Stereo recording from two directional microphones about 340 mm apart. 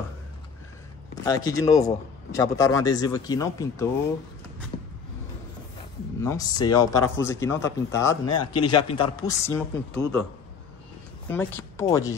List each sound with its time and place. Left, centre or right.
1.2 s a man's voice: centre
4.7 s vehicle: centre
6.2 s a man's voice: centre
11.2 s speech: centre